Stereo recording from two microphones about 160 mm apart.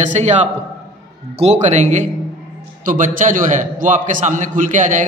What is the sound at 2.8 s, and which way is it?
A man's voice, 55° right (ahead or behind).